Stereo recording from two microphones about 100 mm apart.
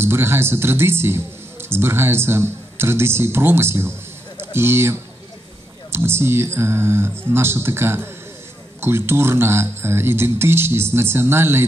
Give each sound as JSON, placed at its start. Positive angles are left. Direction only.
{"t": 0.0, "sound": "a man's voice", "side_deg": -25}